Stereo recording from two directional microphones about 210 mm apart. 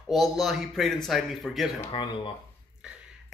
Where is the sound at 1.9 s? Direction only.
25° left (ahead or behind).